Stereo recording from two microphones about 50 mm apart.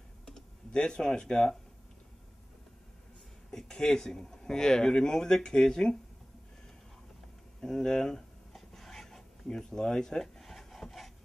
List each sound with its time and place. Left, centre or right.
0.2 s computer keyboard: centre
3.5 s speech: centre
7.6 s a sound: centre